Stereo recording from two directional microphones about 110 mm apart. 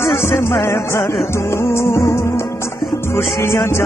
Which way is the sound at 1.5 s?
25° left (ahead or behind).